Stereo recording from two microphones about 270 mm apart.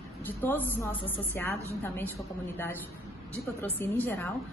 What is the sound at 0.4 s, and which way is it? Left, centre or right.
A woman's voice, centre.